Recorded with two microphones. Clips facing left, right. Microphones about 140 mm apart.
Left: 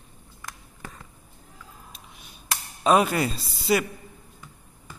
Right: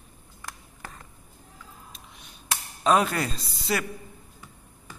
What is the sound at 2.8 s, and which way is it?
A man's voice, 10° left (ahead or behind).